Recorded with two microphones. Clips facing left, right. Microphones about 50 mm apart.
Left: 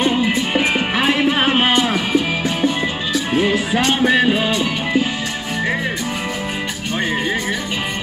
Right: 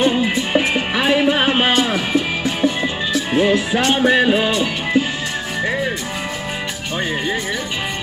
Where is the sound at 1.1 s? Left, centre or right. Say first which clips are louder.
Right 3 dB; centre.